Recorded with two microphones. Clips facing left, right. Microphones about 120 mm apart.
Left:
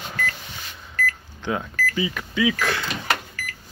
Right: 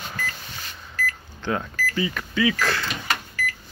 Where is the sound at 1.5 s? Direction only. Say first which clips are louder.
Left 1 dB; 10° left (ahead or behind).